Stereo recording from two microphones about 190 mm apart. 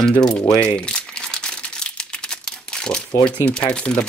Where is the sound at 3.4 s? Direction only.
5° left (ahead or behind).